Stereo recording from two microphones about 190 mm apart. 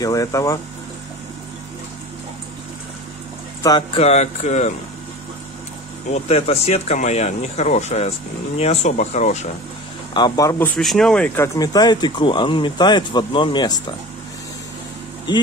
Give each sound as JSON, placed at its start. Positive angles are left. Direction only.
{"t": 0.0, "sound": "speech", "side_deg": 20}
{"t": 3.6, "sound": "speech", "side_deg": 20}
{"t": 4.0, "sound": "speech", "side_deg": 35}
{"t": 6.1, "sound": "speech", "side_deg": 35}
{"t": 10.1, "sound": "speech", "side_deg": 20}
{"t": 10.8, "sound": "speech", "side_deg": 0}
{"t": 11.4, "sound": "speech", "side_deg": 20}